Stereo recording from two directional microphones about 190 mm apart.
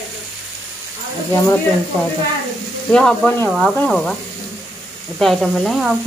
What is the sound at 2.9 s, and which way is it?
Sizzle, 5° left (ahead or behind).